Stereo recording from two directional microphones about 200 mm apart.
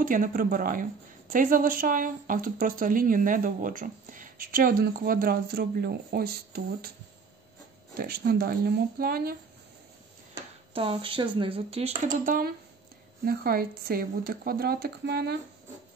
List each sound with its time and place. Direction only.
0.0 s a woman's voice: 45° right (ahead or behind)
8.0 s a woman's voice: 50° right (ahead or behind)
10.7 s speech: 25° right (ahead or behind)
12.3 s a woman's voice: 45° right (ahead or behind)